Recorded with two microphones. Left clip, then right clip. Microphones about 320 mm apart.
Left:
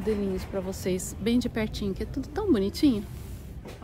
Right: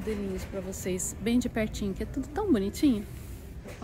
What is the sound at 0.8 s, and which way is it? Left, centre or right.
Speech, centre.